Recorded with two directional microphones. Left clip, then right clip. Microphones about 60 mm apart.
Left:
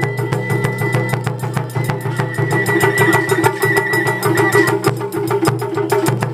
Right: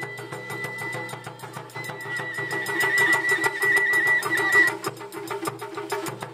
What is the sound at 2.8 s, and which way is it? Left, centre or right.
Music, right.